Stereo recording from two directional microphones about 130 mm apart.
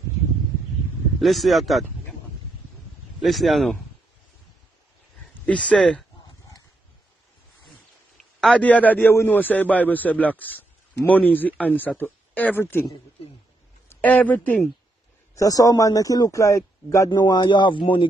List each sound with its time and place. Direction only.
1.2 s speech: centre (ahead or behind)
3.2 s speech: centre (ahead or behind)
5.4 s a man's voice: 10° left (ahead or behind)
8.4 s a man's voice: 5° left (ahead or behind)
13.8 s speech: 10° left (ahead or behind)
15.3 s a man's voice: 25° left (ahead or behind)